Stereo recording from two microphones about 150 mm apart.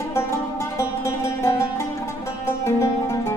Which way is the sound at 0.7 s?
20° left (ahead or behind).